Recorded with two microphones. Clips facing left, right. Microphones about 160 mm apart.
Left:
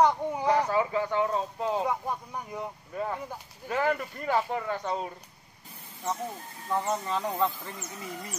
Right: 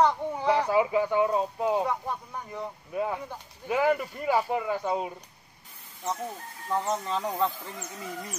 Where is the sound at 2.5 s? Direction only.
15° left (ahead or behind).